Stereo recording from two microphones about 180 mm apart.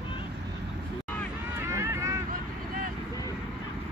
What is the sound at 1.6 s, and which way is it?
Vehicle, 15° right (ahead or behind).